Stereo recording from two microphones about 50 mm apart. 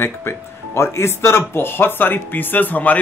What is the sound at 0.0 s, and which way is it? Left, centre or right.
Speech, left.